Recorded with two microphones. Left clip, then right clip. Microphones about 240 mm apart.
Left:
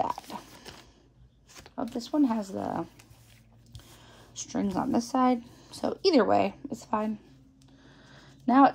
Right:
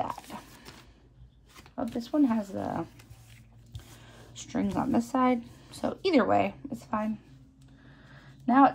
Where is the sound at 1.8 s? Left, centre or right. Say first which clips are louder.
Even; centre.